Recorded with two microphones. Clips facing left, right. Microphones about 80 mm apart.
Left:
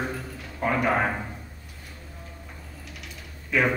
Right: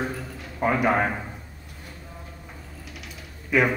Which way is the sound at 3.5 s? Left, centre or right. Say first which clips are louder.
Right 3 dB; centre.